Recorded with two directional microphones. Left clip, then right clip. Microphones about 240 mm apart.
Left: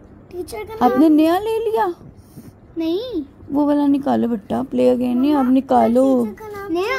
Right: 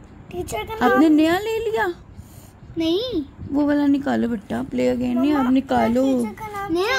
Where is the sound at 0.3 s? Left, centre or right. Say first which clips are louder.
Right 1 dB; right.